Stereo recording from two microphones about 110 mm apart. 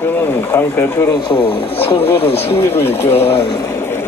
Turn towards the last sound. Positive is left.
turn(degrees=20)  # may be behind; listen again after turning